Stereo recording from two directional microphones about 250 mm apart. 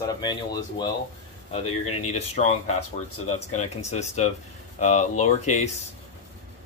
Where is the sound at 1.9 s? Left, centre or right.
Left.